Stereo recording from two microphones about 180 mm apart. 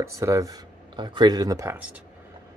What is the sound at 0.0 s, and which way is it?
Speech, 15° right (ahead or behind).